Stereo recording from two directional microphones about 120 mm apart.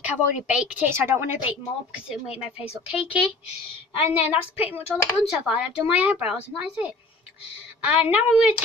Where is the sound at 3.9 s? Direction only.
60° left (ahead or behind).